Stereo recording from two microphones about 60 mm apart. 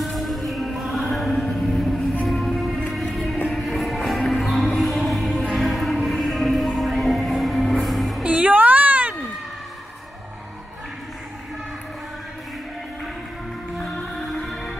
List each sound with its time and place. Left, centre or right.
0.0 s music: centre
8.2 s music: right
14.4 s music: centre